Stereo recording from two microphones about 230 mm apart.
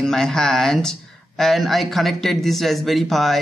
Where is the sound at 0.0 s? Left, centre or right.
Centre.